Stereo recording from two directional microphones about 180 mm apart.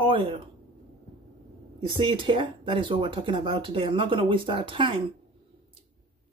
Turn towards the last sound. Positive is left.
turn(degrees=-30)  # may be behind; listen again after turning